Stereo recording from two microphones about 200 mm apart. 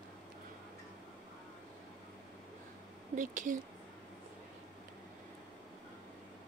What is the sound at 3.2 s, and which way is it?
Speech, 40° right (ahead or behind).